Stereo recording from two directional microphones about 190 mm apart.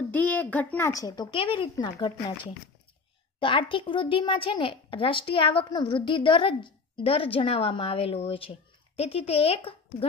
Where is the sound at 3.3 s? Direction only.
25° left (ahead or behind).